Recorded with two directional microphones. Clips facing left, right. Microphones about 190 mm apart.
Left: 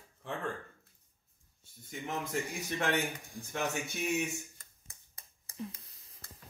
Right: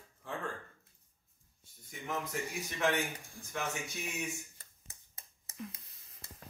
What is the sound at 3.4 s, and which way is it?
Speech, 15° left (ahead or behind).